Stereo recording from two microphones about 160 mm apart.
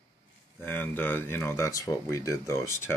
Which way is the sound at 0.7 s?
15° left (ahead or behind).